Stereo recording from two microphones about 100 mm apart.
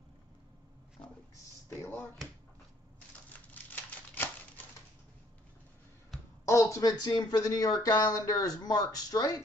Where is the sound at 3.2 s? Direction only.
15° left (ahead or behind).